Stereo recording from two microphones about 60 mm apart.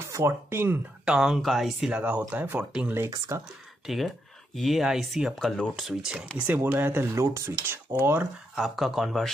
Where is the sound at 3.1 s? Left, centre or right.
Right.